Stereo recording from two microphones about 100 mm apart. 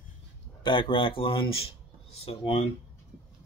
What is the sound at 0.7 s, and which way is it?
Speech, 55° left (ahead or behind).